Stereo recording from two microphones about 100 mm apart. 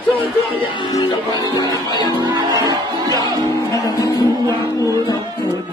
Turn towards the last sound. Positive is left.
turn(degrees=40)  # may be behind; listen again after turning